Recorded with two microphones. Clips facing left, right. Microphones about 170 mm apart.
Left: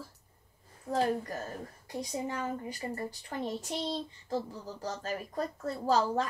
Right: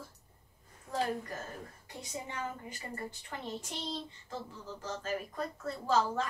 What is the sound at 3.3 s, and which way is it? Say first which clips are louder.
A child's voice: left 7 dB; 35° left (ahead or behind).